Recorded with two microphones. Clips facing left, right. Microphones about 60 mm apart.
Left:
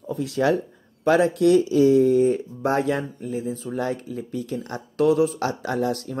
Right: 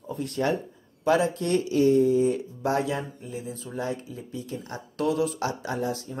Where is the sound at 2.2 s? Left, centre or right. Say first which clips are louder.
Left 4 dB; left.